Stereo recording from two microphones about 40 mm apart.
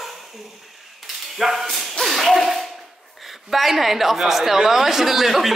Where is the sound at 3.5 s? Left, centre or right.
Centre.